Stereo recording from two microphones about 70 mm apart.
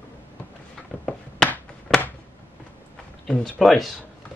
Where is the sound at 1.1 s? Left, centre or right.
Centre.